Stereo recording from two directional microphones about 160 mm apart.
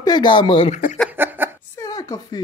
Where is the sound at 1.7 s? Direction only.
20° left (ahead or behind).